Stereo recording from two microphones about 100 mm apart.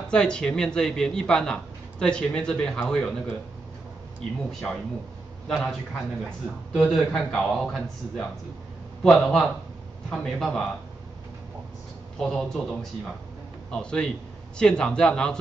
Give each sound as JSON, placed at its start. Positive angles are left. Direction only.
{"t": 0.1, "sound": "speech", "side_deg": 10}
{"t": 4.5, "sound": "speech", "side_deg": 5}
{"t": 12.2, "sound": "speech", "side_deg": 5}